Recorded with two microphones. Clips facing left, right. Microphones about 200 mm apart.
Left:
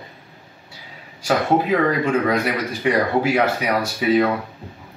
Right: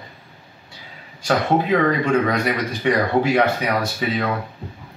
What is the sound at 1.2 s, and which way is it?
Speech, 5° left (ahead or behind).